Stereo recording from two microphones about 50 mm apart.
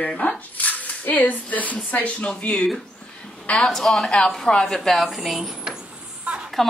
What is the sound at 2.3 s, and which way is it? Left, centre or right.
Speech, centre.